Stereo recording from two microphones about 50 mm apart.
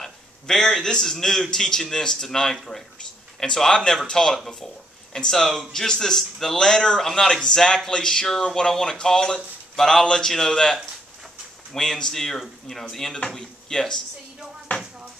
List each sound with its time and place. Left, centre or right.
0.0 s speech: centre